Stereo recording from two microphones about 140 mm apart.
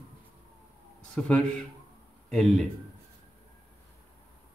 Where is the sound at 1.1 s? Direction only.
5° left (ahead or behind).